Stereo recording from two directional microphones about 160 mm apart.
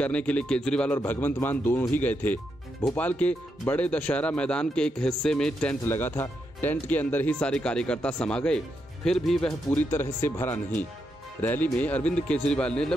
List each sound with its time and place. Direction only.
0.0 s speech: 10° left (ahead or behind)
9.7 s speech: 15° left (ahead or behind)